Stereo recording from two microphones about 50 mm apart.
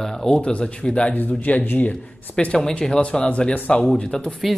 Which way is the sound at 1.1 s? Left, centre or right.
Left.